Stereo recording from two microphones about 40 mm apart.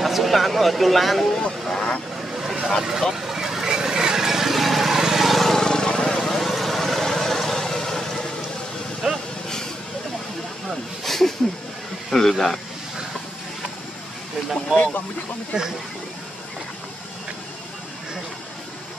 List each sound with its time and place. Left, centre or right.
0.0 s speech: centre
2.4 s vehicle: centre
5.7 s vehicle: centre
6.1 s vehicle: centre
9.0 s vehicle: centre
11.1 s a sound: centre
12.1 s speech: centre
14.7 s speech: right